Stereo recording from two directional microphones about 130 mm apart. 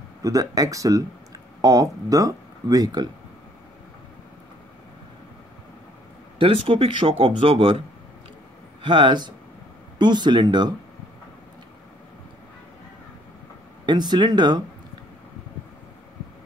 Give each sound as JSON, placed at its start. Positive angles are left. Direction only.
{"t": 0.2, "sound": "speech", "side_deg": -25}
{"t": 6.4, "sound": "speech", "side_deg": -45}
{"t": 8.8, "sound": "speech", "side_deg": -40}
{"t": 13.8, "sound": "speech", "side_deg": -35}